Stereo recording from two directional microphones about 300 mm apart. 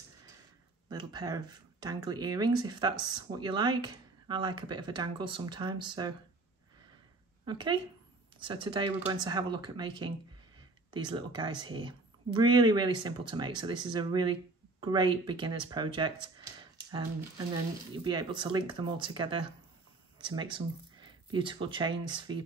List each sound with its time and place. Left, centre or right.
0.8 s speech: centre
7.4 s speech: centre
17.9 s speech: centre